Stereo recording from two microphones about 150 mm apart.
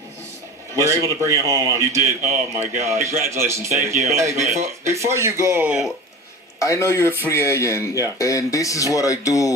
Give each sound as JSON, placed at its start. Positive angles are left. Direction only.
{"t": 0.7, "sound": "a man's voice", "side_deg": -20}
{"t": 6.6, "sound": "speech", "side_deg": 20}